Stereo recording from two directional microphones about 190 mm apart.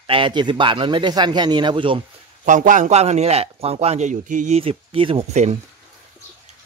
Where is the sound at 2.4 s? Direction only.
45° right (ahead or behind).